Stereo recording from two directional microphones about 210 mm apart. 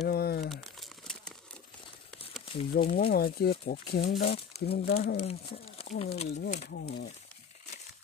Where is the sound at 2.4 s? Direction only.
25° left (ahead or behind).